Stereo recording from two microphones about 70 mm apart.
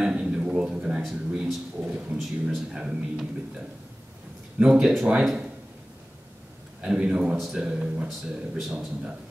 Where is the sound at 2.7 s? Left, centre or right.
Centre.